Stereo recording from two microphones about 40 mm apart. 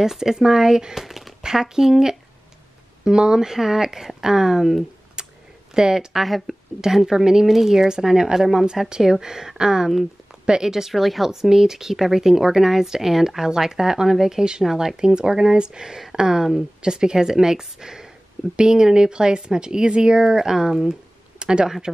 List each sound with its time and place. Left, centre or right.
0.0 s speech: centre
1.0 s a sound: centre
1.4 s speech: centre
5.2 s a sound: right
5.8 s speech: centre
6.1 s speech: centre
7.1 s a woman's voice: centre
10.9 s speech: centre
15.0 s speech: centre
21.9 s speech: centre